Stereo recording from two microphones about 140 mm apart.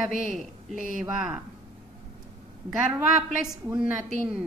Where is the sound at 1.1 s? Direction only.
5° right (ahead or behind).